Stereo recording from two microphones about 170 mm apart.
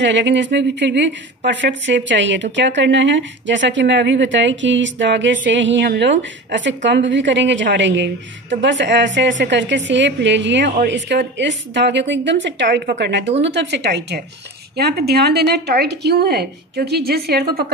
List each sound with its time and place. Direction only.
0.0 s a woman's voice: 90° right
14.8 s a woman's voice: 70° right (ahead or behind)